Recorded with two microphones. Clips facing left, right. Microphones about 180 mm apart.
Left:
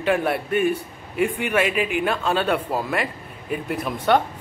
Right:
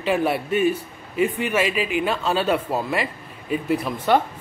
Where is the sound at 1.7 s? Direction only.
55° left (ahead or behind).